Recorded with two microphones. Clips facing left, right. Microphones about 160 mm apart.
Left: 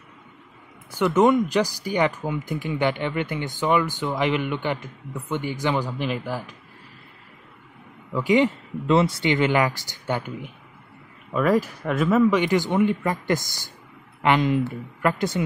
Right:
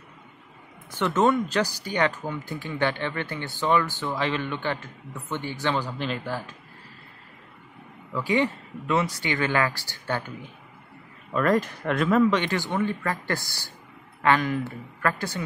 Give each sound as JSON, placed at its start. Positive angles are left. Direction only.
{"t": 0.9, "sound": "speech", "side_deg": 10}
{"t": 8.1, "sound": "speech", "side_deg": 15}